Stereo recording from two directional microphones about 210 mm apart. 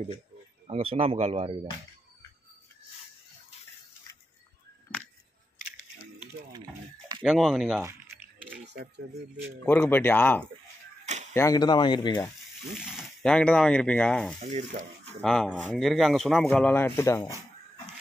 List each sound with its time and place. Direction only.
0.7 s speech: 25° right (ahead or behind)
7.2 s speech: centre (ahead or behind)
8.7 s speech: 55° right (ahead or behind)
9.7 s speech: 10° left (ahead or behind)
12.7 s speech: 5° right (ahead or behind)
14.4 s speech: 35° right (ahead or behind)
15.2 s speech: centre (ahead or behind)